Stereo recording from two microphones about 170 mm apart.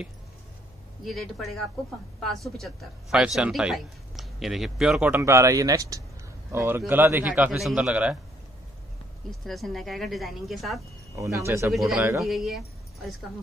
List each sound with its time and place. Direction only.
1.0 s a man's voice: centre (ahead or behind)
9.4 s speech: centre (ahead or behind)
11.1 s a man's voice: 20° right (ahead or behind)
11.7 s speech: centre (ahead or behind)
12.0 s a man's voice: 15° right (ahead or behind)
12.3 s speech: centre (ahead or behind)